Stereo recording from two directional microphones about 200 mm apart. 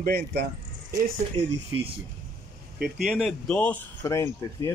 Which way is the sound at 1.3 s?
30° right (ahead or behind).